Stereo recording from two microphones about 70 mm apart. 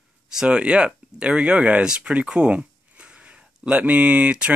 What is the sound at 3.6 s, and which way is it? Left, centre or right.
Speech, right.